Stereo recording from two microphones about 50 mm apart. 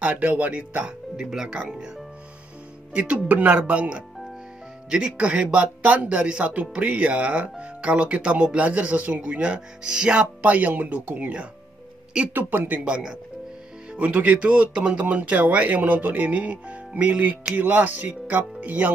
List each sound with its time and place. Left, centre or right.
0.0 s speech: right
1.1 s speech: centre
2.9 s speech: right
12.9 s speech: centre
13.9 s speech: right